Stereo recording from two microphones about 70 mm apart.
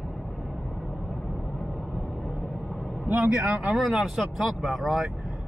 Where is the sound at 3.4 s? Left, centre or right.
Centre.